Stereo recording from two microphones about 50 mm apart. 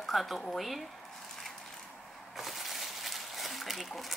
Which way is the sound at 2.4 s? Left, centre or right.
Centre.